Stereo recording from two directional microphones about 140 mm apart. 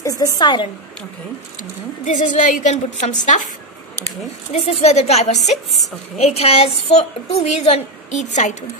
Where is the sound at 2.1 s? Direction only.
65° left (ahead or behind).